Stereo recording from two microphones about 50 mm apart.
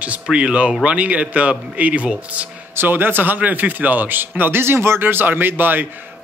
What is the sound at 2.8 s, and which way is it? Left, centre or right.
A man's voice, right.